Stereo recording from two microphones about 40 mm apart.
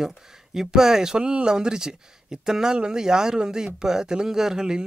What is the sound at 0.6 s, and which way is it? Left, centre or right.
A man's voice, centre.